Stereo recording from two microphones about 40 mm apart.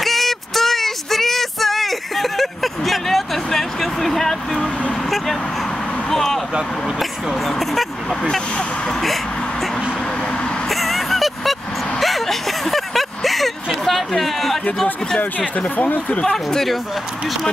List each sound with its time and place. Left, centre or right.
0.0 s female singing: centre
6.0 s speech: centre
10.7 s a sound: centre
13.8 s speech: centre
15.1 s speech: left
16.2 s speech: centre